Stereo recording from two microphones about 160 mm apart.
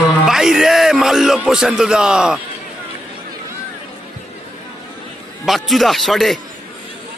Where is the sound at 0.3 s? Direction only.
5° right (ahead or behind).